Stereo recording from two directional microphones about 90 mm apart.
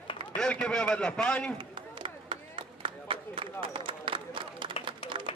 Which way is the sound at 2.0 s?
75° right (ahead or behind).